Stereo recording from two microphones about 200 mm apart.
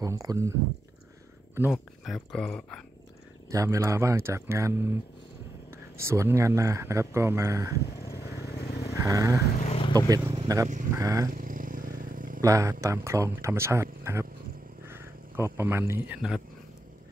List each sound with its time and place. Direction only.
0.0 s speech: 15° right (ahead or behind)
2.0 s speech: centre (ahead or behind)
3.4 s speech: 15° right (ahead or behind)
7.7 s speech: 55° left (ahead or behind)
8.2 s vehicle: 55° left (ahead or behind)
9.0 s speech: 15° right (ahead or behind)
9.6 s vehicle: 30° left (ahead or behind)
9.9 s speech: 15° right (ahead or behind)
11.3 s vehicle: 45° right (ahead or behind)
12.4 s speech: 15° right (ahead or behind)